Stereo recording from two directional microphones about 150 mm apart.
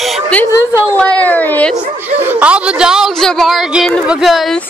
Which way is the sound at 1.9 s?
15° right (ahead or behind).